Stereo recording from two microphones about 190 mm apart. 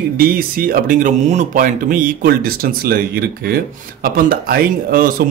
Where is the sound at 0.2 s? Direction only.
50° right (ahead or behind).